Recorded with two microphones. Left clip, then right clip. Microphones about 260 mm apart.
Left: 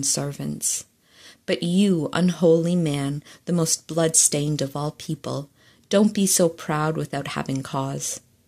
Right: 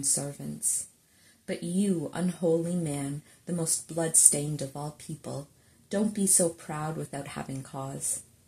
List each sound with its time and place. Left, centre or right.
0.4 s speech: left